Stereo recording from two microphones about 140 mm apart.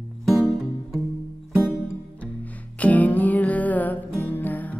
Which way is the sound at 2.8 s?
10° left (ahead or behind).